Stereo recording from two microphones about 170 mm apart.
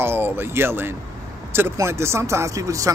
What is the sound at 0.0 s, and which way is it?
Speech, 15° right (ahead or behind).